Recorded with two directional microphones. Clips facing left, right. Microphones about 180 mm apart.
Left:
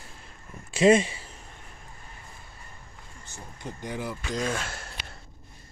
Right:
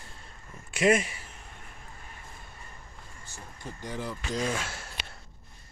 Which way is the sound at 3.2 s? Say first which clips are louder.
Left 3 dB; 20° left (ahead or behind).